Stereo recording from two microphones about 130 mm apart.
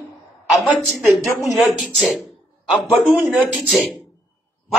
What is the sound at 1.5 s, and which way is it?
Speech, centre (ahead or behind).